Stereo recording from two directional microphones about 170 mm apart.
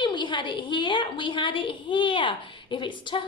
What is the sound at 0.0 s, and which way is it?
A woman's voice, 25° left (ahead or behind).